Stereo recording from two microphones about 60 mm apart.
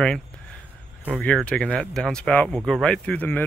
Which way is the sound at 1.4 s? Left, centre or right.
Centre.